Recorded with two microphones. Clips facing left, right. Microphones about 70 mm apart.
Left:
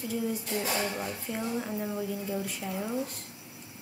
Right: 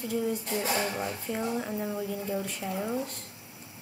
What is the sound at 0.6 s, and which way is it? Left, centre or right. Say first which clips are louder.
Speech: right 1 dB; right.